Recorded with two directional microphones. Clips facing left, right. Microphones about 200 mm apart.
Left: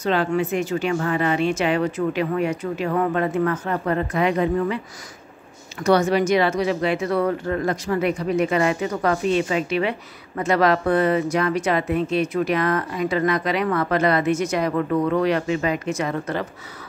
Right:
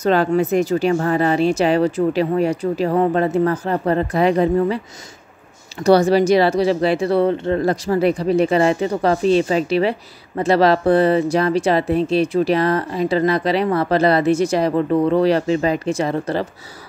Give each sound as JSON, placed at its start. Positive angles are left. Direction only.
{"t": 0.0, "sound": "speech", "side_deg": -40}
{"t": 5.9, "sound": "speech", "side_deg": -35}